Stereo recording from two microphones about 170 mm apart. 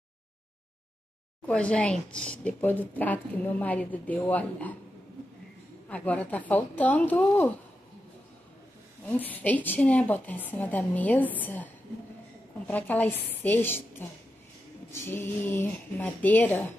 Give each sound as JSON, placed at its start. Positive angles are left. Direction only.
{"t": 1.4, "sound": "a woman's voice", "side_deg": 5}
{"t": 5.9, "sound": "a woman's voice", "side_deg": 10}
{"t": 9.0, "sound": "a woman's voice", "side_deg": 10}